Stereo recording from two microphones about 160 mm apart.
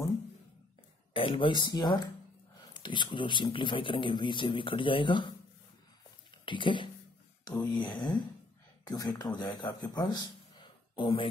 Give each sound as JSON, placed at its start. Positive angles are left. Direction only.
{"t": 1.1, "sound": "speech", "side_deg": 30}
{"t": 6.3, "sound": "a man's voice", "side_deg": 30}